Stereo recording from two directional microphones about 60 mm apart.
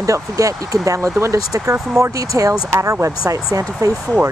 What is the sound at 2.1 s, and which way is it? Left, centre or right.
Speech, right.